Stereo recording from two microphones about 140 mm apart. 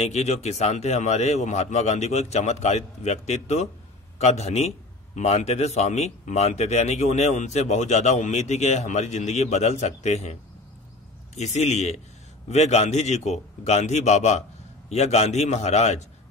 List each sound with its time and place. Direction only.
0.0 s a man's voice: 50° left (ahead or behind)
11.3 s a man's voice: 55° left (ahead or behind)